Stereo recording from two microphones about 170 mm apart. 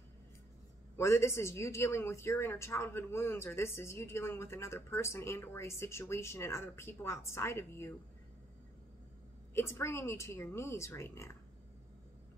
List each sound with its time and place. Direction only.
0.9 s speech: 15° left (ahead or behind)
9.5 s speech: 15° left (ahead or behind)